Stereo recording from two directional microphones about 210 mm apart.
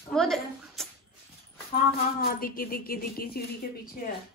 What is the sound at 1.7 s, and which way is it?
Speech, 40° left (ahead or behind).